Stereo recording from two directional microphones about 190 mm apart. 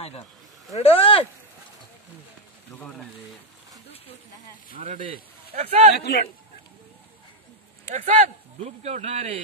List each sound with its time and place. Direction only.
0.7 s speech: 30° left (ahead or behind)
2.7 s speech: 5° left (ahead or behind)
4.7 s a man's voice: 40° right (ahead or behind)
5.9 s a man's voice: 60° left (ahead or behind)
7.9 s a man's voice: 40° right (ahead or behind)